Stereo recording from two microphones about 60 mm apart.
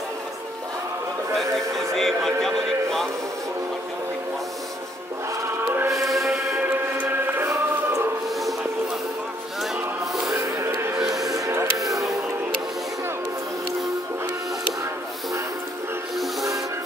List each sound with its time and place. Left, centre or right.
1.3 s a sound: centre
2.4 s music: centre
5.9 s music: centre
6.7 s music: right
10.3 s music: right
11.0 s music: centre